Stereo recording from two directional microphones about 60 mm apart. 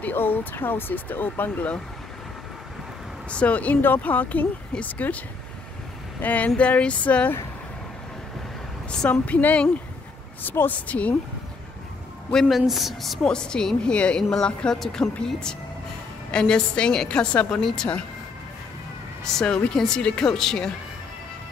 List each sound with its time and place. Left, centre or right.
0.0 s speech: left
3.3 s speech: left
6.2 s speech: left
9.2 s speech: left
12.4 s speech: centre
13.2 s speech: centre
17.6 s speech: centre
19.4 s speech: centre